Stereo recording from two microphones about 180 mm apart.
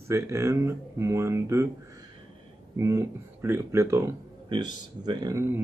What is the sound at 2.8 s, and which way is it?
Speech, 15° right (ahead or behind).